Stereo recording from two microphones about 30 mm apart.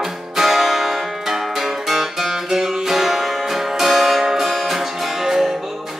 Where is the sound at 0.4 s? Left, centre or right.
Centre.